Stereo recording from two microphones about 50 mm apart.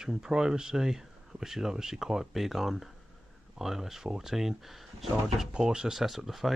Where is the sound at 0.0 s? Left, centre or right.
Centre.